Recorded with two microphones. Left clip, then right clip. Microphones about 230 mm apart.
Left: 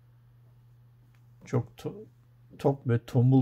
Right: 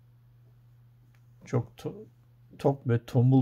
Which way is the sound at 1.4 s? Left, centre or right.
Centre.